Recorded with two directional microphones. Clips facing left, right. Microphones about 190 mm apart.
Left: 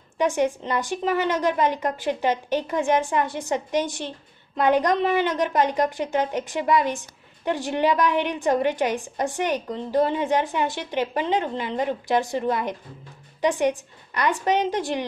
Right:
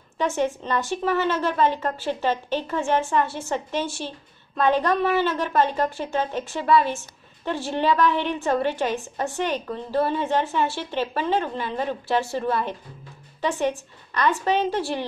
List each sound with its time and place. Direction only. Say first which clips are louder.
0.2 s a woman's voice: left 2 dB; 15° left (ahead or behind)